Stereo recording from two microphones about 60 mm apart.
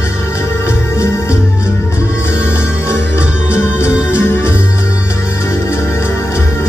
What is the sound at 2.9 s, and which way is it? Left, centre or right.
Music, left.